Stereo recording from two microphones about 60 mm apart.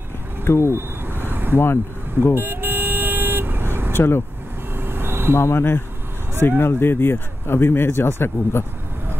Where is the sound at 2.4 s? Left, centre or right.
Right.